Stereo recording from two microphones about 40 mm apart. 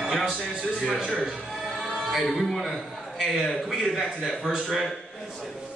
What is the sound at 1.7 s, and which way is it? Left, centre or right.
Choir, centre.